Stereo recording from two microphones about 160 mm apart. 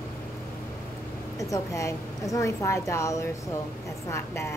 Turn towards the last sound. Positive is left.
turn(degrees=15)  # may be behind; listen again after turning